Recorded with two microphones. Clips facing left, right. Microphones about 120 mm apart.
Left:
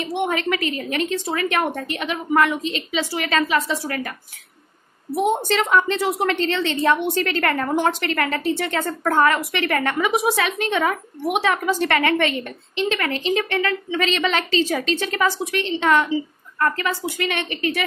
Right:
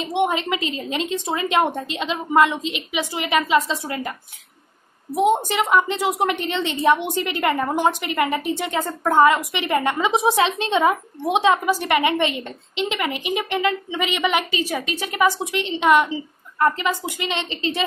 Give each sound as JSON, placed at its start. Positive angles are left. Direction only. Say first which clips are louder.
{"t": 0.0, "sound": "a woman's voice", "louder": "right 1 dB", "side_deg": -20}
{"t": 5.1, "sound": "a woman's voice", "louder": "right 1 dB", "side_deg": -15}